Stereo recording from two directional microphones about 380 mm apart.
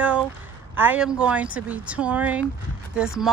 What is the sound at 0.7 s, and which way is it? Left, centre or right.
A woman's voice, centre.